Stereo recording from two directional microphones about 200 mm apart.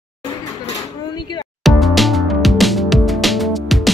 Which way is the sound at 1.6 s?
Centre (ahead or behind).